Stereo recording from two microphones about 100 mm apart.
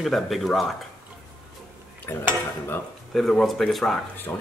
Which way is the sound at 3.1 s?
5° left (ahead or behind).